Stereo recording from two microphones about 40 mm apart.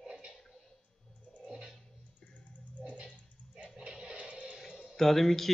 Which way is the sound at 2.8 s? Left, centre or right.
Right.